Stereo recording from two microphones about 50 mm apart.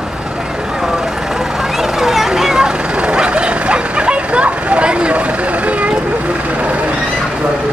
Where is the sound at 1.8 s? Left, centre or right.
Centre; by 5.2 s right.